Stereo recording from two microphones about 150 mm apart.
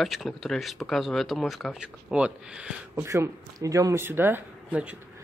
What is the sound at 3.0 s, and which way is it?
Speech, 20° right (ahead or behind).